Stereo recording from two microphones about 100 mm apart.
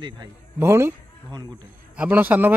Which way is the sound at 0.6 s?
25° right (ahead or behind).